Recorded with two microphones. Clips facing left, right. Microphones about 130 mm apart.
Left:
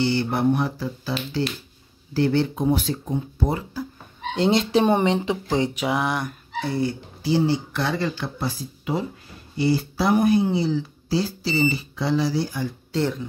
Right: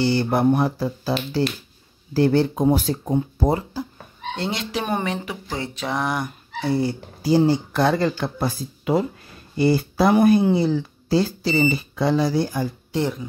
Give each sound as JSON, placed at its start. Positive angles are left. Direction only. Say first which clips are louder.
{"t": 0.0, "sound": "speech", "louder": "right 2 dB", "side_deg": -40}
{"t": 4.4, "sound": "speech", "louder": "left 8 dB", "side_deg": 25}
{"t": 5.9, "sound": "a sound", "louder": "left 1 dB", "side_deg": 5}
{"t": 6.8, "sound": "speech", "louder": "right 1 dB", "side_deg": -40}
{"t": 10.1, "sound": "speech", "louder": "right 2 dB", "side_deg": -75}
{"t": 12.9, "sound": "speech", "louder": "even", "side_deg": -15}